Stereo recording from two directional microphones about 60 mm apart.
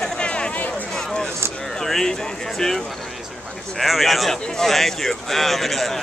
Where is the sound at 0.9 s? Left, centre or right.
Centre.